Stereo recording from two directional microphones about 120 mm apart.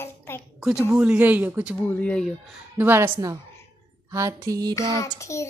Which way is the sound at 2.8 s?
20° right (ahead or behind).